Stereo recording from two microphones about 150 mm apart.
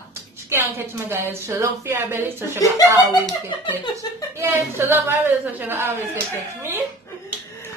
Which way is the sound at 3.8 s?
25° left (ahead or behind).